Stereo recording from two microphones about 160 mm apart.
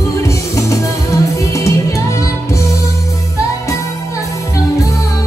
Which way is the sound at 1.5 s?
20° left (ahead or behind).